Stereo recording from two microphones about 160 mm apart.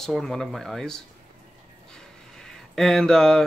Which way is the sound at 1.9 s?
5° left (ahead or behind).